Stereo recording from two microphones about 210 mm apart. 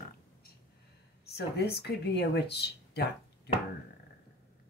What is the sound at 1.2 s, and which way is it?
Speech, 50° left (ahead or behind).